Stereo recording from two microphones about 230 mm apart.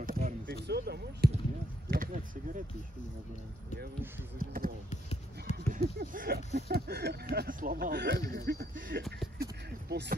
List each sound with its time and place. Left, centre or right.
0.0 s basketball bounce: right
1.9 s speech: right
4.4 s speech: right
9.4 s a sound: right